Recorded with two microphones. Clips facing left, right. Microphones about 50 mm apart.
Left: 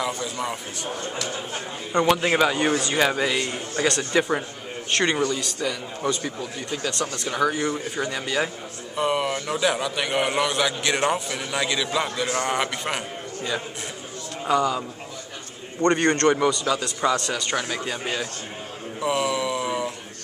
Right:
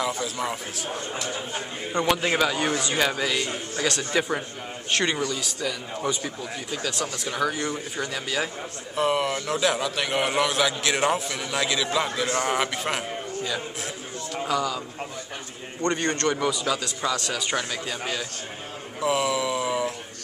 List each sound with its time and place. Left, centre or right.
0.0 s a man's voice: centre
2.8 s a man's voice: centre
3.1 s a man's voice: centre
3.8 s a man's voice: centre
14.5 s speech: centre
15.8 s a man's voice: left
16.4 s a man's voice: centre
17.6 s speech: left
18.9 s a sound: centre